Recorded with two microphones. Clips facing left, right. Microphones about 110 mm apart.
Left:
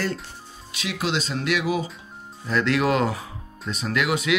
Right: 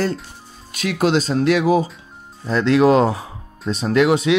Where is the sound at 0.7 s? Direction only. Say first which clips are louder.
Right 9 dB; 45° right (ahead or behind); by 4.4 s 30° right (ahead or behind).